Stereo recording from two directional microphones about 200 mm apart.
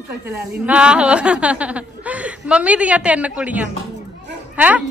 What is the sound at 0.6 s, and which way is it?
Speech, 5° right (ahead or behind).